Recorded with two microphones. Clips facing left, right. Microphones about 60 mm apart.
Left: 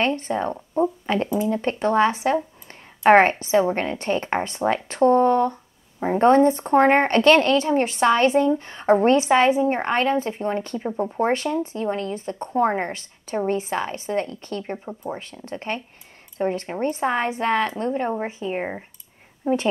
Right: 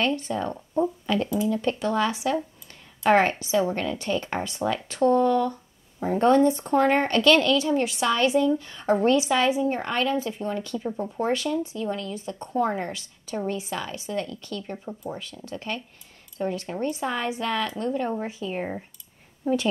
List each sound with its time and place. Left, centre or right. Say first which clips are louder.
0.0 s a woman's voice: left 3 dB; left